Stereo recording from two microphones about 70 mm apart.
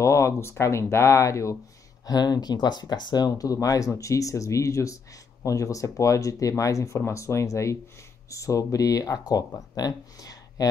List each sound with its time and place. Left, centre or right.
0.0 s speech: left
2.0 s speech: left